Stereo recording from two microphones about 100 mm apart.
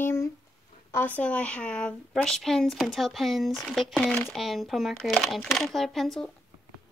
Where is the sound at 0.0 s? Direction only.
25° left (ahead or behind).